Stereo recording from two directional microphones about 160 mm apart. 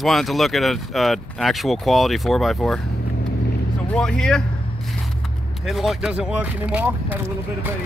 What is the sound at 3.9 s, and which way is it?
Speech, 5° left (ahead or behind).